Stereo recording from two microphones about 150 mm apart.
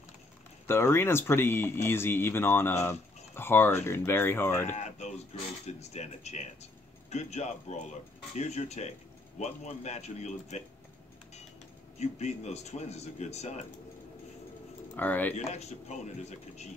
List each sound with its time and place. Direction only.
0.7 s speech: 15° left (ahead or behind)
4.7 s speech: 50° left (ahead or behind)
12.0 s speech: 50° left (ahead or behind)
15.0 s speech: 10° left (ahead or behind)
15.3 s speech: 50° left (ahead or behind)